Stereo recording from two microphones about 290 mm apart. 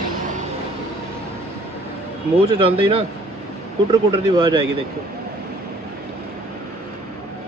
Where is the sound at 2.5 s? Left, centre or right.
Right.